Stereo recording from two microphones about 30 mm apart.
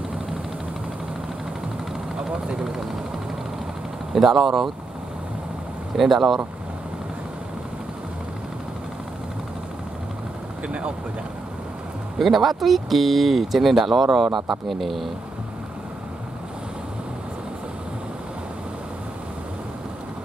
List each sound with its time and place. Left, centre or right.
2.2 s speech: right
4.1 s speech: centre
5.9 s speech: centre
10.7 s speech: right
12.2 s speech: centre